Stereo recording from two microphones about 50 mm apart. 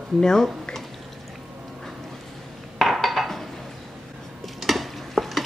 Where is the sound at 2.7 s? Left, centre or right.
Centre.